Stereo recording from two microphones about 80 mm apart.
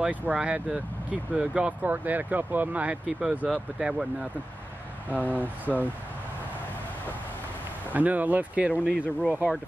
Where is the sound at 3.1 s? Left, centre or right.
Centre.